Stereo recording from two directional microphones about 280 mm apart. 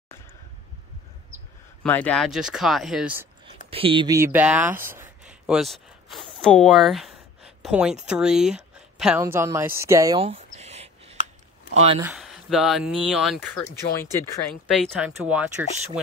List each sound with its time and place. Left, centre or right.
1.8 s speech: centre
3.7 s speech: centre
12.0 s speech: centre